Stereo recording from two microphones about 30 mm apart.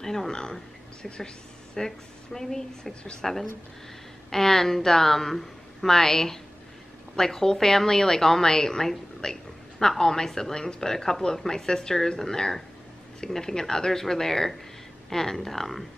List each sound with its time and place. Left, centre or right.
0.0 s a woman's voice: centre
1.8 s a woman's voice: centre
2.9 s a woman's voice: left
3.2 s a woman's voice: centre